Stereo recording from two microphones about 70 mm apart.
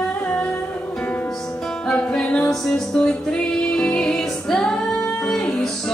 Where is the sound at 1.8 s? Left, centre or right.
Centre.